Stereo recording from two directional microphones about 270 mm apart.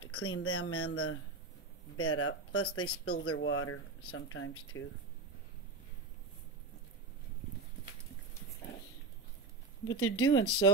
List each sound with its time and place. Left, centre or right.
0.1 s speech: left
10.0 s speech: left